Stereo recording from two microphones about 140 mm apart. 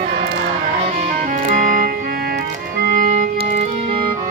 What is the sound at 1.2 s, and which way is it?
Music, 70° right (ahead or behind).